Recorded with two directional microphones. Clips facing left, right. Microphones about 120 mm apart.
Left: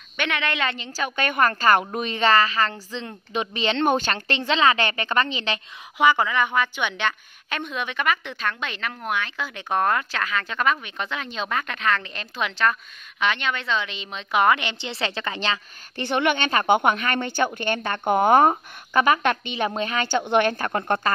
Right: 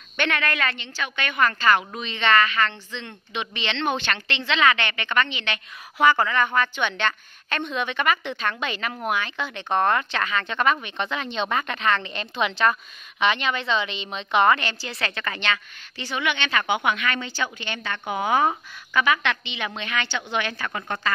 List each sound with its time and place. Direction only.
0.2 s a woman's voice: 15° left (ahead or behind)
0.7 s a woman's voice: 40° left (ahead or behind)
5.9 s a woman's voice: 15° left (ahead or behind); by 15.6 s 30° left (ahead or behind)
16.0 s a woman's voice: 55° left (ahead or behind)